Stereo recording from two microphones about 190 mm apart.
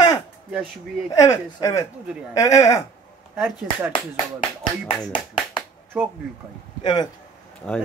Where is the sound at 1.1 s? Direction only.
15° left (ahead or behind).